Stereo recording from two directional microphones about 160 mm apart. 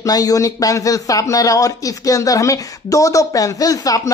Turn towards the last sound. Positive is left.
turn(degrees=20)  # may be behind; listen again after turning